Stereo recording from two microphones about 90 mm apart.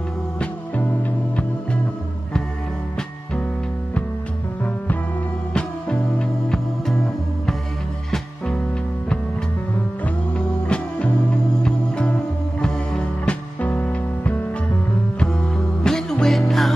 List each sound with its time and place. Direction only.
0.4 s music: 15° left (ahead or behind)
5.5 s music: 10° left (ahead or behind)
10.7 s music: 15° left (ahead or behind)
15.1 s music: 5° left (ahead or behind)